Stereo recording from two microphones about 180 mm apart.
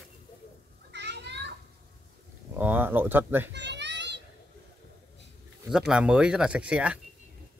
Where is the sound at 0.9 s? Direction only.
70° right (ahead or behind).